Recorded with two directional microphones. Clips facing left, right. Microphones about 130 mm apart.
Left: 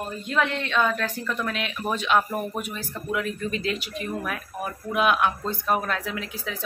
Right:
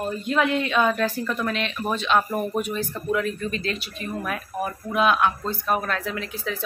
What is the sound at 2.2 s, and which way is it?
Speech, 5° right (ahead or behind).